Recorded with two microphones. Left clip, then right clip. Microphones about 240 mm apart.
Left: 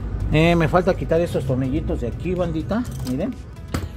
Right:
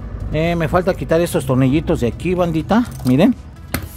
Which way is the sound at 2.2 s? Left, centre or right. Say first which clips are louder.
Right 5 dB; right.